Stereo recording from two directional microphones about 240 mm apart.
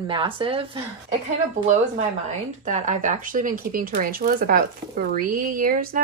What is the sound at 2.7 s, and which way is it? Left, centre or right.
Speech, right.